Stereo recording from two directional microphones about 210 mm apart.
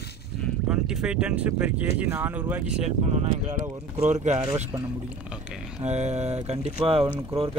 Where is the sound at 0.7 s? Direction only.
5° right (ahead or behind).